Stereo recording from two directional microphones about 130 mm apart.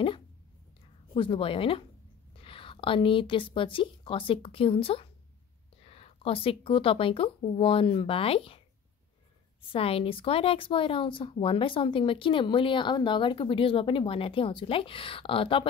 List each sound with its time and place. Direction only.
1.1 s speech: 45° left (ahead or behind)
9.7 s speech: 45° left (ahead or behind)